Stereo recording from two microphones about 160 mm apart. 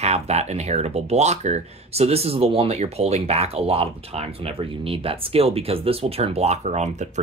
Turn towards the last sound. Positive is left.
turn(degrees=-45)  # may be behind; listen again after turning